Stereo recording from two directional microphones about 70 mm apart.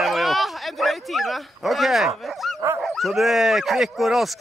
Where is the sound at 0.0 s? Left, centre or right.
Centre.